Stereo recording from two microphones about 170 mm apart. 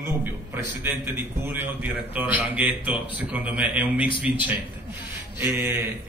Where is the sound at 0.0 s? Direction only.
15° right (ahead or behind).